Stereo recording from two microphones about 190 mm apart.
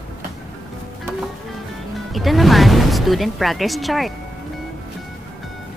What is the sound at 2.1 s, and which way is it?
A woman's voice, centre (ahead or behind).